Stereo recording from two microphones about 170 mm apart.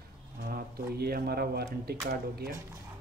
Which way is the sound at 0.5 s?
65° right (ahead or behind).